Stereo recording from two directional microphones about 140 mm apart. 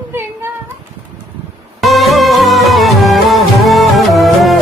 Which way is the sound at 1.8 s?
Centre (ahead or behind).